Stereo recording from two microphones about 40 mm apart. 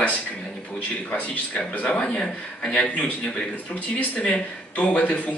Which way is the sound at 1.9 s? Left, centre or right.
Left.